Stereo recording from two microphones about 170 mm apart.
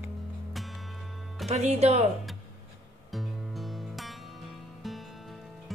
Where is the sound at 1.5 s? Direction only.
40° right (ahead or behind).